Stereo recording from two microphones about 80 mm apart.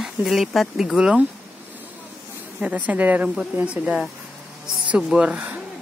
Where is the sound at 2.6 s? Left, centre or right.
Centre.